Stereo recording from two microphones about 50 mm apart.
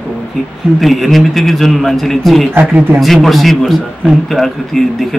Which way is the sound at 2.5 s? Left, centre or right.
Right.